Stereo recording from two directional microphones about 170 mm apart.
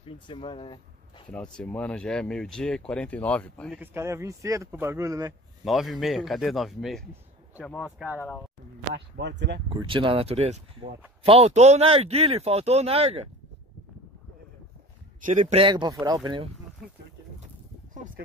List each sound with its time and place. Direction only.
0.0 s speech: 30° left (ahead or behind)
1.3 s speech: 5° left (ahead or behind)
3.7 s speech: 10° right (ahead or behind)
5.6 s speech: centre (ahead or behind)
8.9 s speech: 90° right
9.7 s speech: 30° right (ahead or behind)
15.1 s speech: 50° right (ahead or behind)
15.5 s speech: 25° right (ahead or behind)